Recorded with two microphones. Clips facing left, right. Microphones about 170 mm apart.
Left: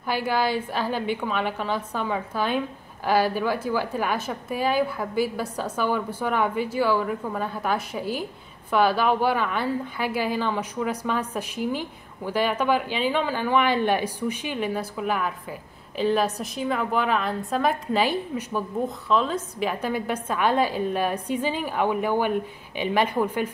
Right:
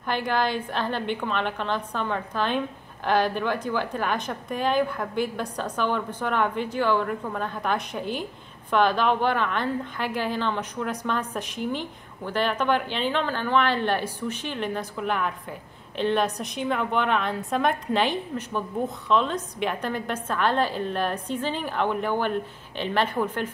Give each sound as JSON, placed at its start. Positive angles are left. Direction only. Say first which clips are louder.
{"t": 0.0, "sound": "a woman's voice", "louder": "left 1 dB", "side_deg": 5}